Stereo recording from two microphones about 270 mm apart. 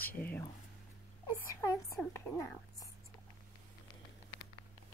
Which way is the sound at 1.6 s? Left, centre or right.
Centre.